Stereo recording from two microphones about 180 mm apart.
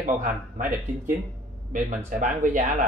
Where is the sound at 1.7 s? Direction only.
45° right (ahead or behind).